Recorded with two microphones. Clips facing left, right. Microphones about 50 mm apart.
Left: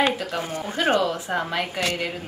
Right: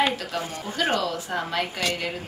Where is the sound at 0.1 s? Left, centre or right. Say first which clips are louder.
Left 2 dB; centre.